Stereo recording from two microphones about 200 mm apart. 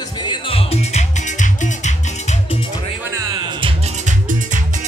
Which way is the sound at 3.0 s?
15° right (ahead or behind).